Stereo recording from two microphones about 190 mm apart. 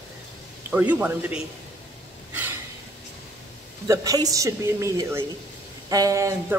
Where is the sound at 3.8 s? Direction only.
20° right (ahead or behind).